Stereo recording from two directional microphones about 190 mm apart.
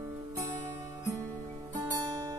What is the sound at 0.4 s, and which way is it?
Music, 15° right (ahead or behind).